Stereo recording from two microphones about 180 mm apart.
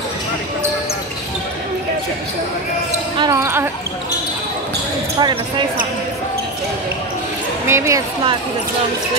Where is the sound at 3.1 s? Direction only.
20° right (ahead or behind).